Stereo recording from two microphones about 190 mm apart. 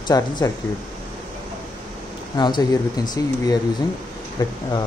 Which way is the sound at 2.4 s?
25° left (ahead or behind).